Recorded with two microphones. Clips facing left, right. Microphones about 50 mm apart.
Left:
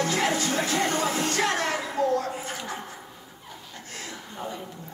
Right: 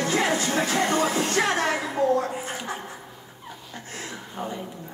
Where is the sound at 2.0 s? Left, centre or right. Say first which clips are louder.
Right 3 dB; right.